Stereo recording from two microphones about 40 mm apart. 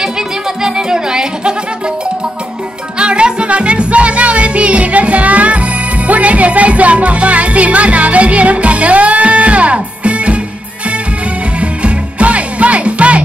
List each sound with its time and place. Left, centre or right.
0.6 s music: centre
3.0 s music: right
11.6 s music: right